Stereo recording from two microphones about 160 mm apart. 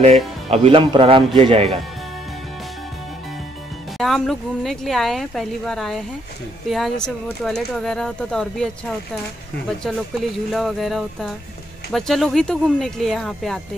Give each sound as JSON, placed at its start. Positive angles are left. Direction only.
{"t": 0.0, "sound": "speech", "side_deg": -40}
{"t": 4.0, "sound": "speech", "side_deg": 0}
{"t": 10.5, "sound": "speech", "side_deg": 0}